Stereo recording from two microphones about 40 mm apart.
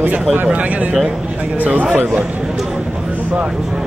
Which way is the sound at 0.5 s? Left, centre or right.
Right.